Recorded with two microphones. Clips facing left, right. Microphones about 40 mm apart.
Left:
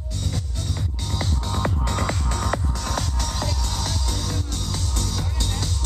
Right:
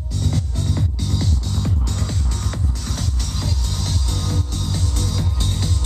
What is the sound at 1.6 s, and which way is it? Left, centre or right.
Music, left.